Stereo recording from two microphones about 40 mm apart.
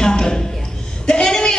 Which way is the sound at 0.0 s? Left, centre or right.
Centre.